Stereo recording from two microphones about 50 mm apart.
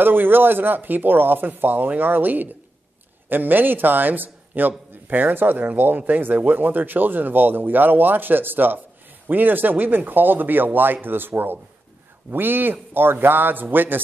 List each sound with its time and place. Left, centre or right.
0.0 s a man's voice: right